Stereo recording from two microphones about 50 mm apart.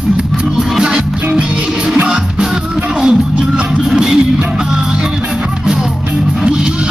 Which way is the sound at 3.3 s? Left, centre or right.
Right.